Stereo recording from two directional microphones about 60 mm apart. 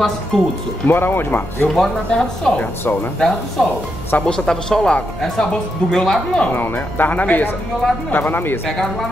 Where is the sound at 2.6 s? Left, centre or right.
Left.